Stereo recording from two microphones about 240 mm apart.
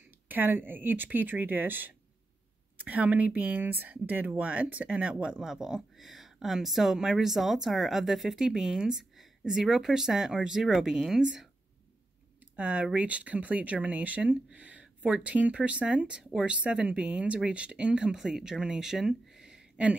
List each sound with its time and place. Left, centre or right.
0.3 s speech: centre
12.5 s speech: centre